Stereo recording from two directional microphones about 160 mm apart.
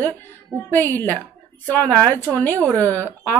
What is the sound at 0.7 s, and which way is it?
Speech, 10° left (ahead or behind).